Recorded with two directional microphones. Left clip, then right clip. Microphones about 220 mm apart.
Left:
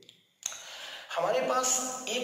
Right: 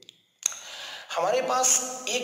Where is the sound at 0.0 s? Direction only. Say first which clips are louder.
Right 9 dB; 45° right (ahead or behind).